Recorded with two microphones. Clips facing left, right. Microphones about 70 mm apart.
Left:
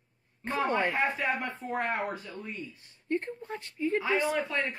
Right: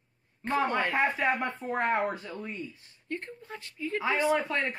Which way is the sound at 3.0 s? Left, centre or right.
Left.